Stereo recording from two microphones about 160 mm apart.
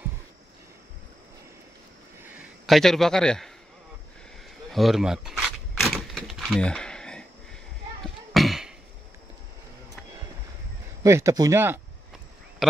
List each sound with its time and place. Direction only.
2.6 s a man's voice: centre (ahead or behind)
4.6 s speech: centre (ahead or behind)
5.8 s a sound: centre (ahead or behind)
11.0 s speech: 20° right (ahead or behind)